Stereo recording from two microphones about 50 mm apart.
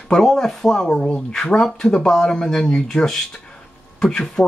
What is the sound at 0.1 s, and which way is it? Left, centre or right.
Speech, centre.